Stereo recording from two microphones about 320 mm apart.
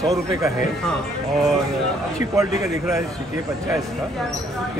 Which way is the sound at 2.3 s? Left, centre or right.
Centre.